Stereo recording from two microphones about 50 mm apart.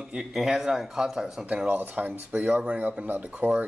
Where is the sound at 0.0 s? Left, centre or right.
Centre.